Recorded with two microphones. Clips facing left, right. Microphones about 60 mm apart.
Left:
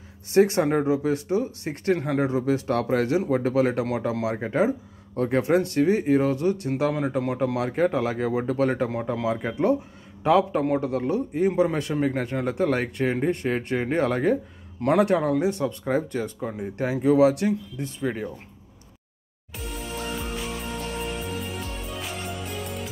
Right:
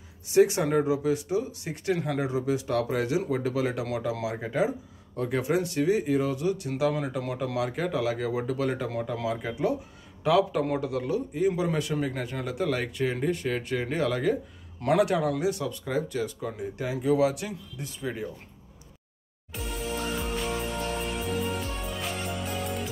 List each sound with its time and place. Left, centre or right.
0.3 s speech: left
0.7 s speech: left
2.0 s speech: left
2.2 s speech: left
6.9 s speech: left
9.2 s speech: left
16.5 s speech: left
17.7 s speech: left
19.5 s music: centre